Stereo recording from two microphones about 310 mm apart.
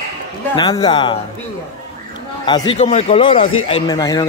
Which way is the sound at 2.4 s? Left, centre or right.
Centre.